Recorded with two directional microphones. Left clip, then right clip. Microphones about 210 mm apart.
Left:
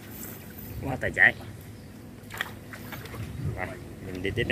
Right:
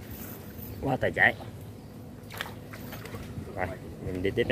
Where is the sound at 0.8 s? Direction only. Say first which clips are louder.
Left 2 dB; 15° right (ahead or behind).